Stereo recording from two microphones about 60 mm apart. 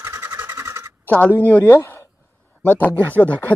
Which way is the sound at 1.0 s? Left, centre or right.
Left.